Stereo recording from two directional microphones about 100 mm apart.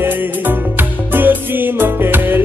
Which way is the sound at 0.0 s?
20° right (ahead or behind).